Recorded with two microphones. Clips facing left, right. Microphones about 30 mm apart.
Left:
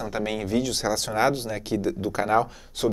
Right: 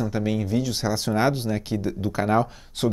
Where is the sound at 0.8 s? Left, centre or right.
Centre.